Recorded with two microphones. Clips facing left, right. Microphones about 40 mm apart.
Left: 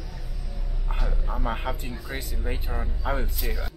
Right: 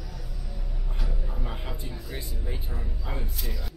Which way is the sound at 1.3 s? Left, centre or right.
Left.